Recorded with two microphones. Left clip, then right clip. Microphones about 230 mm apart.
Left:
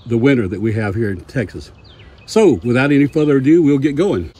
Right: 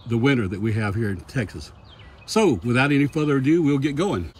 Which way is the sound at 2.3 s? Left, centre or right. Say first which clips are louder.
Left 8 dB; centre.